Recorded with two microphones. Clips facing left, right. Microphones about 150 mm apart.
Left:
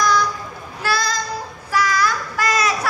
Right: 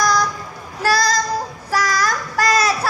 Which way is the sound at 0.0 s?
40° right (ahead or behind).